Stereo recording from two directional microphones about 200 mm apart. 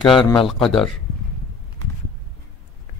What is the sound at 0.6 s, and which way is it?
Speech, 5° left (ahead or behind).